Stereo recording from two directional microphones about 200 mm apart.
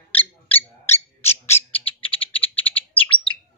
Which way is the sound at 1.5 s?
30° left (ahead or behind).